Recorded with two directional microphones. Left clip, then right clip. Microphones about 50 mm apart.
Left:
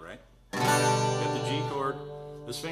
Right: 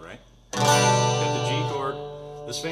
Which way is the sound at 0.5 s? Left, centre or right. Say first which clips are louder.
Right 5 dB; right.